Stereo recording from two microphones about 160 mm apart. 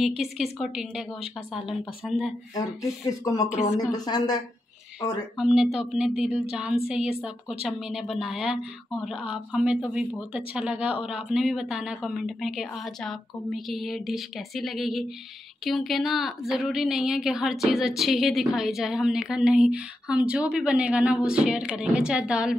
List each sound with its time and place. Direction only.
0.2 s a woman's voice: centre (ahead or behind)
2.5 s speech: 20° left (ahead or behind)
5.4 s a woman's voice: 5° right (ahead or behind)